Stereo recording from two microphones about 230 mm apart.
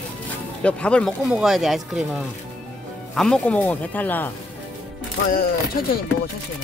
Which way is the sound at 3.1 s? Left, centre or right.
Centre.